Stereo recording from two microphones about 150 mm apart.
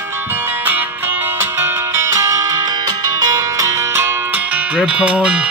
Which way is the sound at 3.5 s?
20° right (ahead or behind).